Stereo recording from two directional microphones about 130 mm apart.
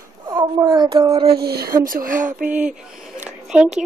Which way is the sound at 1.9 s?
90° right.